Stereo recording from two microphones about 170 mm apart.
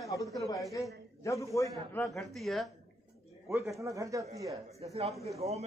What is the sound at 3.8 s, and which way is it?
Speech, 20° right (ahead or behind).